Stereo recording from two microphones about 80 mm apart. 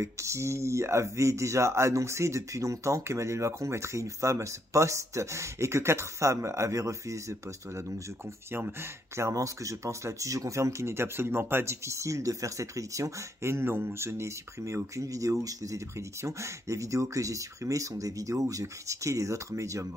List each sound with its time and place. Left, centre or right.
0.0 s speech: right
8.5 s speech: right